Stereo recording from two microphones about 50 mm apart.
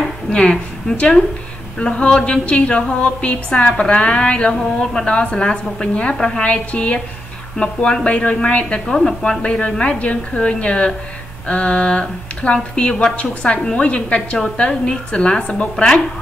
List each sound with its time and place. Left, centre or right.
0.3 s a woman's voice: centre